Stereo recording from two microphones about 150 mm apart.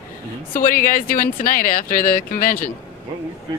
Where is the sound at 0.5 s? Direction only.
70° left (ahead or behind).